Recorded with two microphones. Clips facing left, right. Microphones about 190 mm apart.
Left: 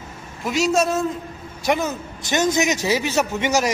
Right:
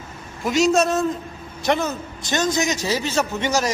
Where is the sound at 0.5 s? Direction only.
5° left (ahead or behind).